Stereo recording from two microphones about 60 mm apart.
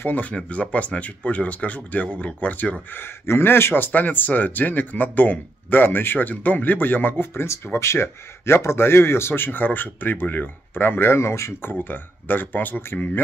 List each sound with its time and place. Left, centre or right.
0.0 s a man's voice: left
11.7 s speech: left